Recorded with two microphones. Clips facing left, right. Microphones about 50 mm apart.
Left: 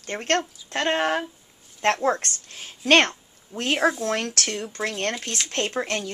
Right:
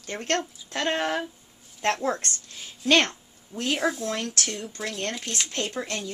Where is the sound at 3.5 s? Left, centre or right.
Centre.